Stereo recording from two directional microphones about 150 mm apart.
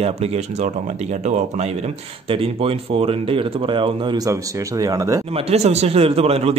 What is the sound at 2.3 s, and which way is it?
Speech, 40° right (ahead or behind).